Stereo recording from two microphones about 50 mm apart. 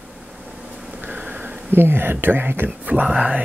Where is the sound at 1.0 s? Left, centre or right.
Right.